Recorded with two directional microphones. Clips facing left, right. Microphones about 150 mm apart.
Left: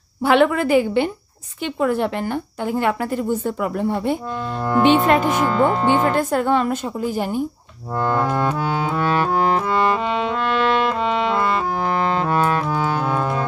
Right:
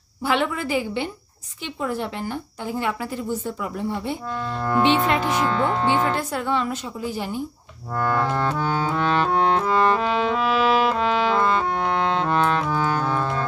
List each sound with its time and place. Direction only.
0.2 s a woman's voice: 60° left (ahead or behind)
4.6 s music: 15° left (ahead or behind)
4.8 s speech: 50° left (ahead or behind)
5.3 s music: 5° left (ahead or behind)
6.0 s speech: 50° left (ahead or behind)
7.9 s music: 20° left (ahead or behind)